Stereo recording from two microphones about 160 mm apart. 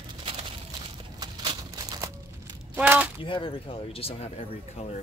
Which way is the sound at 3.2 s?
35° left (ahead or behind).